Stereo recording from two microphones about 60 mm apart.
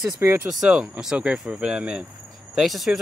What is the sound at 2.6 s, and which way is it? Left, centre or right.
Speech, centre.